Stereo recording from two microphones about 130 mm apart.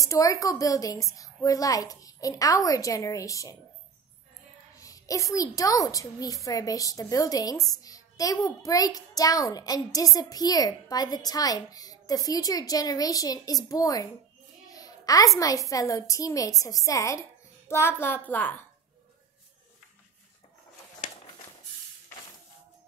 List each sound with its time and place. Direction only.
0.0 s a woman's voice: 25° left (ahead or behind)
4.7 s a woman's voice: 25° left (ahead or behind)